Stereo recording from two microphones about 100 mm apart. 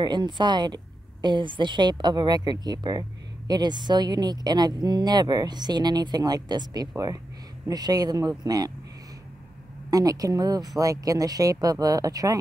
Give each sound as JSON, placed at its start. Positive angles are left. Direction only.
{"t": 0.0, "sound": "speech", "side_deg": -45}
{"t": 9.8, "sound": "speech", "side_deg": -40}